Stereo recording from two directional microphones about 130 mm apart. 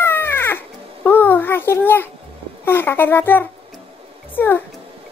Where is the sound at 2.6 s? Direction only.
15° left (ahead or behind).